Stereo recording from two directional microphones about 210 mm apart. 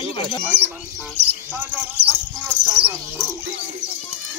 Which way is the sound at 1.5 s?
10° right (ahead or behind).